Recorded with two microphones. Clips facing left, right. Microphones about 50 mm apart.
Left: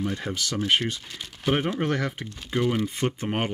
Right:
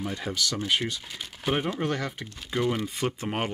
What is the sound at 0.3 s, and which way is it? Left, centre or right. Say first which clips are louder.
Speech: even; left.